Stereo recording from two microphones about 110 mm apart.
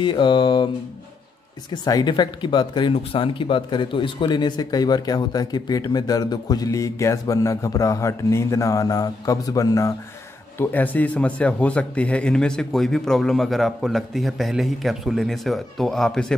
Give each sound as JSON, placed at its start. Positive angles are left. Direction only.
{"t": 0.0, "sound": "a sound", "side_deg": 45}
{"t": 1.7, "sound": "speech", "side_deg": 40}
{"t": 10.6, "sound": "speech", "side_deg": 15}